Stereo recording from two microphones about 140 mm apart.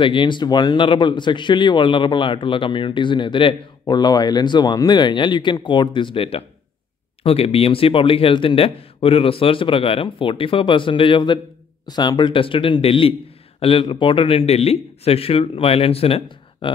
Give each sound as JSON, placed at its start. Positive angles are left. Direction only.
{"t": 0.0, "sound": "a man's voice", "side_deg": 35}